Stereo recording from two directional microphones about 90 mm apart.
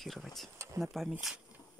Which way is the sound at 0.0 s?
Centre (ahead or behind).